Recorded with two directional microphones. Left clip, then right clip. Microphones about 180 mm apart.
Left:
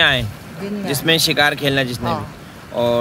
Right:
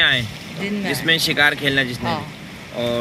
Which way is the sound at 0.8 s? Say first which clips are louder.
Left 2 dB; 20° left (ahead or behind).